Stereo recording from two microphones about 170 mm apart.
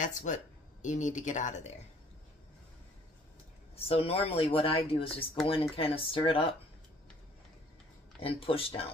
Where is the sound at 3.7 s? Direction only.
35° left (ahead or behind).